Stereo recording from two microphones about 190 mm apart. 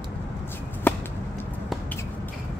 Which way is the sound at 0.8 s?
10° left (ahead or behind).